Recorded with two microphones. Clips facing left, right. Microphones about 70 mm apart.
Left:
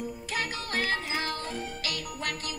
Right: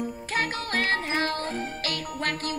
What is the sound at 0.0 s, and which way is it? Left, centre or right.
Music, right.